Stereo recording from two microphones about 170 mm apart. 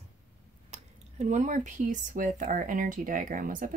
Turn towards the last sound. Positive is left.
turn(degrees=-50)  # may be behind; listen again after turning